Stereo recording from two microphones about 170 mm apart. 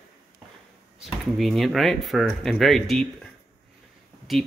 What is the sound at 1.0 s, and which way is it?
Speech, centre (ahead or behind).